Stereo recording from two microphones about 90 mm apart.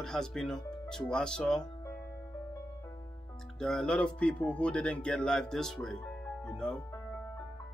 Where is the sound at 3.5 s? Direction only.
5° left (ahead or behind).